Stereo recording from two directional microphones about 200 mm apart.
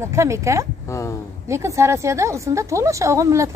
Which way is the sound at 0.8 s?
15° left (ahead or behind).